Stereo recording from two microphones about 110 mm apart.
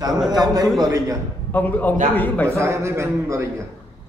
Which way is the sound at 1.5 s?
15° left (ahead or behind).